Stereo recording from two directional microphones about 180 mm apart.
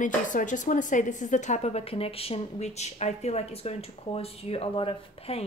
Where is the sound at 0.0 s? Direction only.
45° left (ahead or behind).